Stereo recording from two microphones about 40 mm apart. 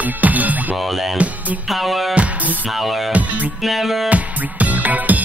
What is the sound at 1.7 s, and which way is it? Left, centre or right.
Music, centre.